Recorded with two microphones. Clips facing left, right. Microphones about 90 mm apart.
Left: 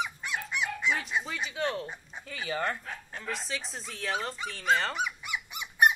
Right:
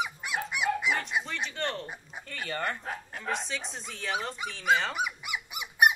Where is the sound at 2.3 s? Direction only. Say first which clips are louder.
Left 1 dB; 5° left (ahead or behind).